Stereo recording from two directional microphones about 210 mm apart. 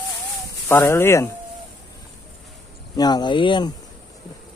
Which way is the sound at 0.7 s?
10° left (ahead or behind).